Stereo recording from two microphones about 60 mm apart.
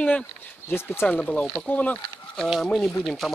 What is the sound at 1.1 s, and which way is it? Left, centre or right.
Speech, left.